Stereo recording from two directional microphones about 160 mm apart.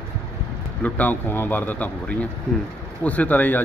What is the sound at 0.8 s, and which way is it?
A man's voice, 10° left (ahead or behind).